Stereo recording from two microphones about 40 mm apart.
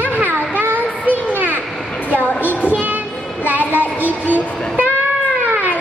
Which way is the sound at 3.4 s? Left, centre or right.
Right.